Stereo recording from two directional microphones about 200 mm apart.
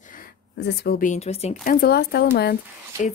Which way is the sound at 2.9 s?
15° right (ahead or behind).